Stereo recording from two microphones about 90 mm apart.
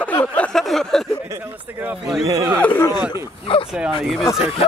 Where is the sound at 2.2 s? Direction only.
40° right (ahead or behind).